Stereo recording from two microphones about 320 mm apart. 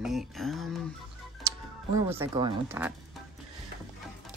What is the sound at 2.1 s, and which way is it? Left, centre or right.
Speech, centre.